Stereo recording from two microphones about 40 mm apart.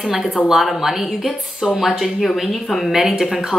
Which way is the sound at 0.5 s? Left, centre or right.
Centre.